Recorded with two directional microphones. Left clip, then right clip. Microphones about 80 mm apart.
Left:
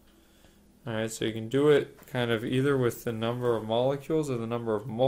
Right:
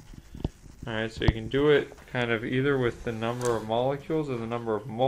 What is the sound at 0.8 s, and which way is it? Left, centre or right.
Speech, left.